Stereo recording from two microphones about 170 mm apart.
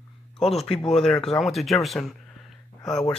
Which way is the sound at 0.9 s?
Centre (ahead or behind).